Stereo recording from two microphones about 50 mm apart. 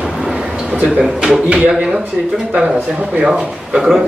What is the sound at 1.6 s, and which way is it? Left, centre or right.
Speech, centre.